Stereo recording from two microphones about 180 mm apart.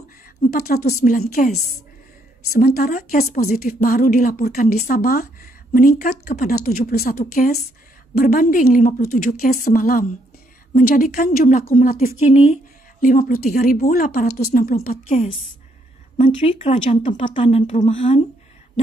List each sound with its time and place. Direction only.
0.4 s speech: 55° left (ahead or behind)
2.5 s speech: 55° left (ahead or behind)
13.0 s speech: 50° left (ahead or behind)
13.9 s speech: 55° left (ahead or behind); by 18.2 s 35° left (ahead or behind)